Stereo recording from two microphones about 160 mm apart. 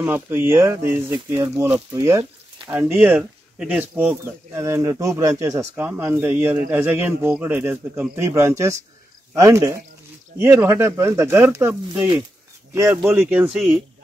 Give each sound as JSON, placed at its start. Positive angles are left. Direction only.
{"t": 0.0, "sound": "speech", "side_deg": -15}